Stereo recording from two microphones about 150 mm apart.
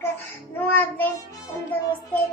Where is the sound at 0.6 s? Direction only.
10° left (ahead or behind).